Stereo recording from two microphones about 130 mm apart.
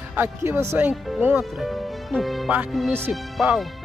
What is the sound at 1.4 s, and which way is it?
Speech, centre (ahead or behind).